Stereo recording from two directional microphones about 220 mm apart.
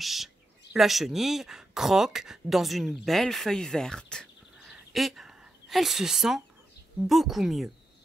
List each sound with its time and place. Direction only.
0.0 s a woman's voice: centre (ahead or behind)